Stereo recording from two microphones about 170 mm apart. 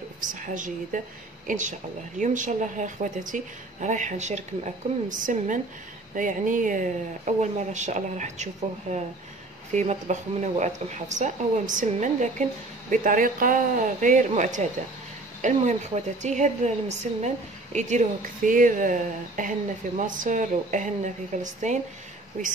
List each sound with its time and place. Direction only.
0.3 s speech: 50° right (ahead or behind)